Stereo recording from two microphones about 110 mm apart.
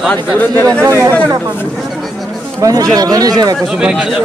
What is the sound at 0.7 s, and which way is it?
Speech, 25° right (ahead or behind).